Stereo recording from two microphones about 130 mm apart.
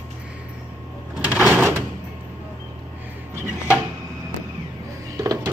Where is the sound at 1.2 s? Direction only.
10° right (ahead or behind).